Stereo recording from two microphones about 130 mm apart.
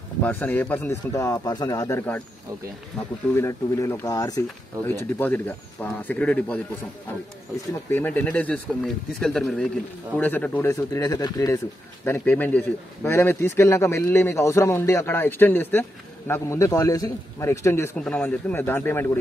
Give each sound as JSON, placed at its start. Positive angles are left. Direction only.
{"t": 0.2, "sound": "speech", "side_deg": 15}
{"t": 3.3, "sound": "speech", "side_deg": 20}
{"t": 4.8, "sound": "speech", "side_deg": 15}
{"t": 7.9, "sound": "speech", "side_deg": 15}
{"t": 17.9, "sound": "speech", "side_deg": 10}